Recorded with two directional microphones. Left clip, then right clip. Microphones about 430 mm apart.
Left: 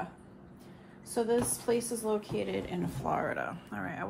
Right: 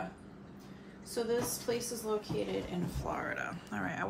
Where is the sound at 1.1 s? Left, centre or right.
Centre.